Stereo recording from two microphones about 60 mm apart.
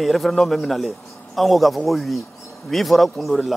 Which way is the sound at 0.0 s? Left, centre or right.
Centre.